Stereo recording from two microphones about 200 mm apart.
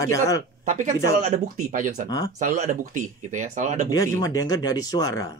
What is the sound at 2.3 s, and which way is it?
Speech, 35° right (ahead or behind).